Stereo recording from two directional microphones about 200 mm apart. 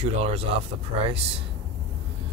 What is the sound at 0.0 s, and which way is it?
Speech, 30° right (ahead or behind).